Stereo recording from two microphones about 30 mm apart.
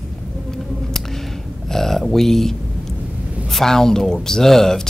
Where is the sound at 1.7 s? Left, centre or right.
Centre.